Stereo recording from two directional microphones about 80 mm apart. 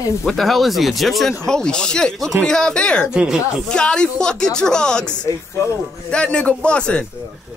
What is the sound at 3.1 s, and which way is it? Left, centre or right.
Speech, centre.